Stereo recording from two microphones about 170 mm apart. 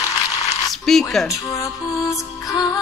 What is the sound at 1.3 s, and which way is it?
Music, 20° left (ahead or behind).